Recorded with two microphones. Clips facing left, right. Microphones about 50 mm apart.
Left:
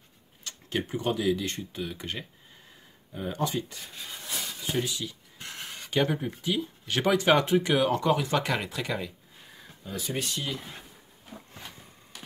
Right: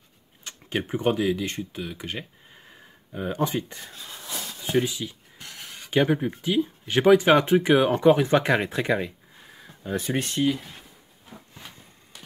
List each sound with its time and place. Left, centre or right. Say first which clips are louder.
0.4 s tick-tock: right 2 dB; centre
1.3 s speech: right 2 dB; centre
3.1 s speech: right 4 dB; right
4.8 s speech: right 4 dB; centre; by 9.1 s right
9.8 s speech: right 6 dB; right